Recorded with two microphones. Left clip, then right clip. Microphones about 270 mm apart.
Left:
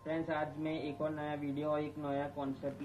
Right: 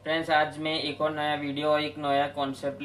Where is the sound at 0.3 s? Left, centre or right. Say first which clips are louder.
Right 12 dB; right.